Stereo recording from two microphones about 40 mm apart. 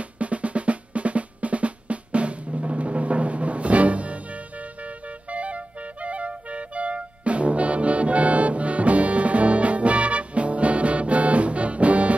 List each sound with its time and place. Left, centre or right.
0.0 s drum: right